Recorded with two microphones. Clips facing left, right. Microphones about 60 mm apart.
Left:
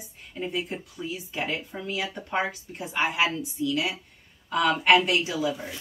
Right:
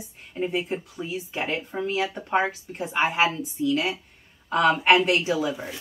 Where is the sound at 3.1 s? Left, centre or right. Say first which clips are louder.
Right 3 dB; right.